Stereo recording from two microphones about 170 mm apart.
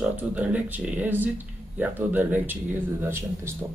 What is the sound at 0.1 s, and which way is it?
Speech, 10° right (ahead or behind).